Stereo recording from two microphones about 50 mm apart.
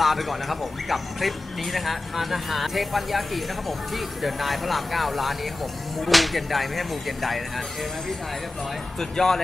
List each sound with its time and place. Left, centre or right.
0.0 s speech: centre
9.1 s speech: centre